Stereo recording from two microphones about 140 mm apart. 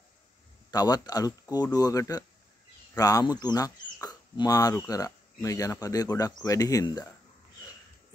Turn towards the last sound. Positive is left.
turn(degrees=25)  # may be behind; listen again after turning